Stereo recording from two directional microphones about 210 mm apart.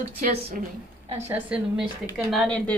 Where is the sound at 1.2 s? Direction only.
5° right (ahead or behind).